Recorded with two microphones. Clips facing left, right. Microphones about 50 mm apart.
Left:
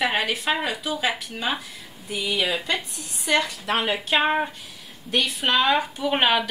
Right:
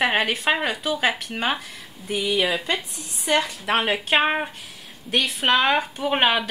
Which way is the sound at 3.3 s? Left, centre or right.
Right.